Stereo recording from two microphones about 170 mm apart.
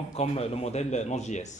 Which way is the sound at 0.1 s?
40° left (ahead or behind).